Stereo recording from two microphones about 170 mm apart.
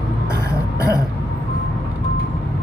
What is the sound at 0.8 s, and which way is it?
Throat clearing, 20° left (ahead or behind).